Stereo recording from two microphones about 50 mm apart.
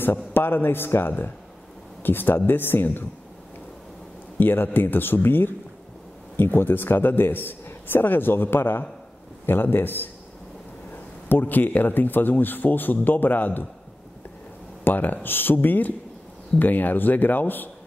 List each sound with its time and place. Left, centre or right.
0.0 s a man's voice: left
4.4 s a man's voice: left
11.2 s speech: left
14.9 s speech: left